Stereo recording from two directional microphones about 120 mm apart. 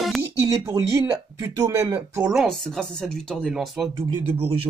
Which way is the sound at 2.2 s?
Centre (ahead or behind).